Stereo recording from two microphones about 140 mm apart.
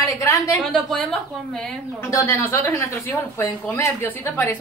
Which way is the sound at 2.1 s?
20° left (ahead or behind).